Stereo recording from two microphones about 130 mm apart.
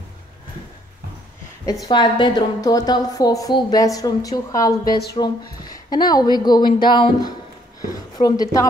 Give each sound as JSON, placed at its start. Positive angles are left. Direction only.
{"t": 1.9, "sound": "a woman's voice", "side_deg": 35}